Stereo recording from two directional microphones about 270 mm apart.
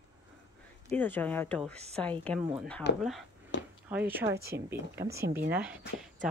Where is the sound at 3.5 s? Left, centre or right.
Left.